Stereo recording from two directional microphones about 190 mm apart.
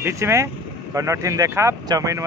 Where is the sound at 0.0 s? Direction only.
15° right (ahead or behind).